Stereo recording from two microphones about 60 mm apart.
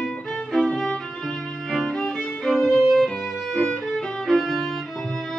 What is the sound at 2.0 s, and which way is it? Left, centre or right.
Violin, centre.